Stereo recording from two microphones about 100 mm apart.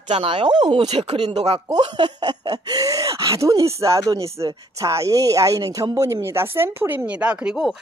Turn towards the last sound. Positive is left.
turn(degrees=-5)  # may be behind; listen again after turning